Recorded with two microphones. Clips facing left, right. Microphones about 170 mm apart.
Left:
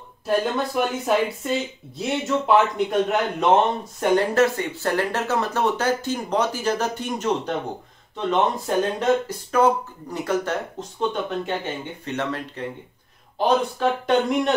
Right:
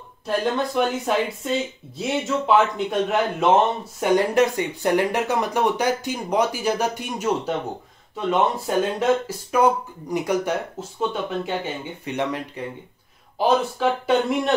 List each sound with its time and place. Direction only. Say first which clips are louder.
0.4 s a man's voice: right 5 dB; centre (ahead or behind)
4.0 s a man's voice: even; 15° right (ahead or behind)